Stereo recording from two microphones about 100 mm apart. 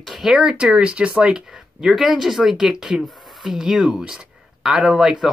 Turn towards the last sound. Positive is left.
turn(degrees=-10)  # may be behind; listen again after turning